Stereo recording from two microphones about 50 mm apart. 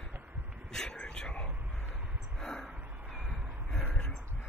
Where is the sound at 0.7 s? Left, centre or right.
Centre.